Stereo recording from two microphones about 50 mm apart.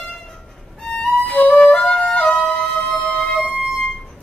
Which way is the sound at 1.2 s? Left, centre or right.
Left.